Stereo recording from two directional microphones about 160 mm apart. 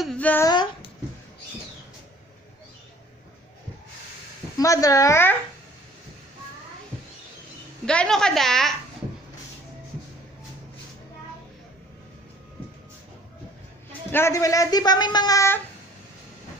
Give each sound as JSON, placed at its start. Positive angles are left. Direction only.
{"t": 0.0, "sound": "a sound", "side_deg": 5}
{"t": 4.6, "sound": "speech", "side_deg": 20}
{"t": 7.8, "sound": "a woman's voice", "side_deg": 5}
{"t": 14.1, "sound": "speech", "side_deg": 15}